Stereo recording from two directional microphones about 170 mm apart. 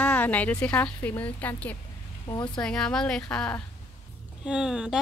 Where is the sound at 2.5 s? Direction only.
5° left (ahead or behind).